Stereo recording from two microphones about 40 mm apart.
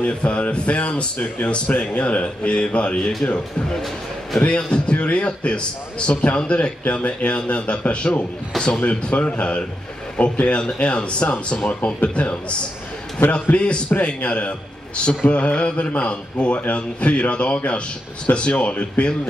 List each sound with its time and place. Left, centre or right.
0.0 s a man's voice: left
4.4 s a man's voice: left
8.8 s a man's voice: left